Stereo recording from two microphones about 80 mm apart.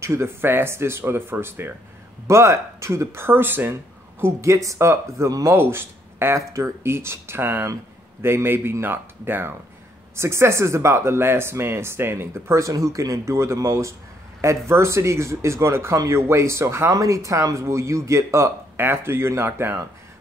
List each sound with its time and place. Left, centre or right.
0.0 s speech: right
4.2 s speech: right